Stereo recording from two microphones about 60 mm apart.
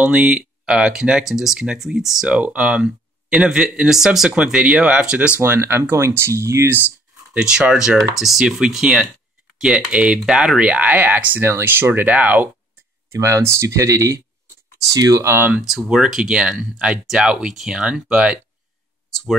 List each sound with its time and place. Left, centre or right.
0.0 s speech: centre
2.2 s speech: right
5.4 s speech: right
7.3 s speech: centre
13.1 s speech: right
15.6 s speech: centre
19.0 s speech: centre